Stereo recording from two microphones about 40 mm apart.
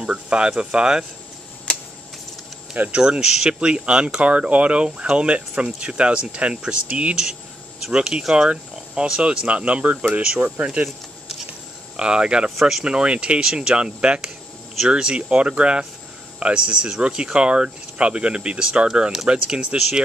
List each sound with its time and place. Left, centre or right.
0.0 s speech: right
3.0 s speech: centre
3.5 s speech: right
10.2 s speech: right
12.0 s speech: right
12.4 s speech: centre
12.8 s speech: right
13.4 s speech: centre